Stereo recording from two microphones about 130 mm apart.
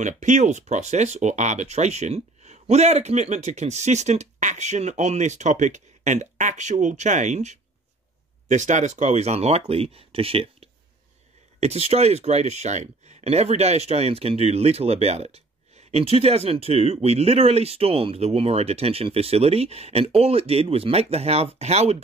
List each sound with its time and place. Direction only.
0.0 s speech: 70° right (ahead or behind)